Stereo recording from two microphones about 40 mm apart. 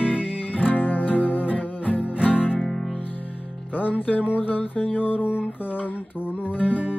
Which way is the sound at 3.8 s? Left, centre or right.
Left.